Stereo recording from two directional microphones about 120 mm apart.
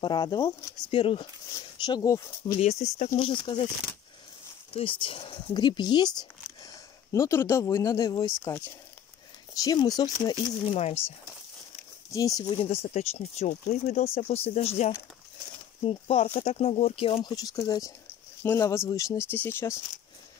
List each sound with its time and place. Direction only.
0.0 s speech: 35° left (ahead or behind)
0.9 s speech: 50° left (ahead or behind)
1.5 s speech: 30° left (ahead or behind)
2.6 s speech: 65° left (ahead or behind)
3.2 s speech: 50° left (ahead or behind)
4.7 s speech: 50° left (ahead or behind)
9.5 s speech: 35° left (ahead or behind)
10.7 s speech: 60° left (ahead or behind)
12.1 s speech: 30° left (ahead or behind)
12.4 s speech: 50° left (ahead or behind)
15.8 s speech: 50° left (ahead or behind)
17.2 s speech: 30° left (ahead or behind)